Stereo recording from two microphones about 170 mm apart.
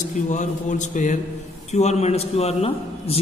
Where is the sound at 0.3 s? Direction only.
45° left (ahead or behind).